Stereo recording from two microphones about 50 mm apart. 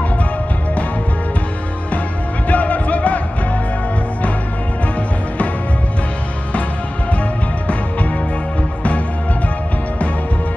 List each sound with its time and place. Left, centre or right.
2.4 s music: left